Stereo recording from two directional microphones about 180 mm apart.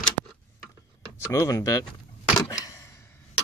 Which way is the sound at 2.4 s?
20° left (ahead or behind).